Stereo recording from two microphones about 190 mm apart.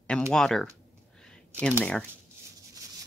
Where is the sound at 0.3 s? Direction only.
Centre (ahead or behind).